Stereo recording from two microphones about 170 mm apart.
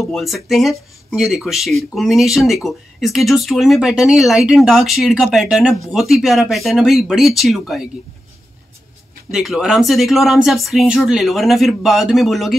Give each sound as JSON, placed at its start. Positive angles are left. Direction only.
{"t": 0.0, "sound": "speech", "side_deg": 0}
{"t": 9.3, "sound": "speech", "side_deg": 0}